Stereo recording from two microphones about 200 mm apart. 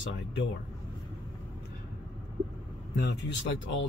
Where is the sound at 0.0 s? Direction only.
65° left (ahead or behind).